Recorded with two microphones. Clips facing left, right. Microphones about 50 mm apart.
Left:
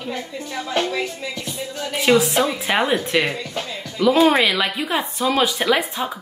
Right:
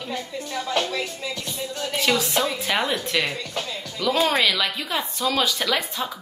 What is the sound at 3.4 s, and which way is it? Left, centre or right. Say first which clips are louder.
A woman's voice: left 2 dB; centre.